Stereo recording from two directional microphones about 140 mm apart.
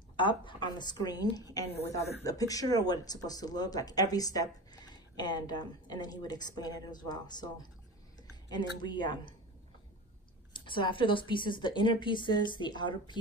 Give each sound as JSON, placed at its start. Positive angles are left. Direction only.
{"t": 0.1, "sound": "a woman's voice", "side_deg": 35}
{"t": 10.5, "sound": "a woman's voice", "side_deg": 35}